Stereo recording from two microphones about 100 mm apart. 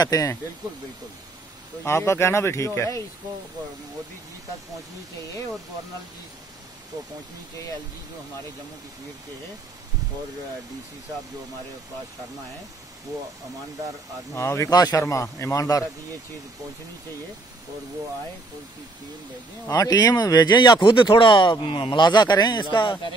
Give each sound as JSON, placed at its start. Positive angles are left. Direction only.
{"t": 0.0, "sound": "speech", "side_deg": 35}
{"t": 1.8, "sound": "speech", "side_deg": 25}
{"t": 14.3, "sound": "speech", "side_deg": 30}
{"t": 14.7, "sound": "speech", "side_deg": 40}
{"t": 19.7, "sound": "speech", "side_deg": 40}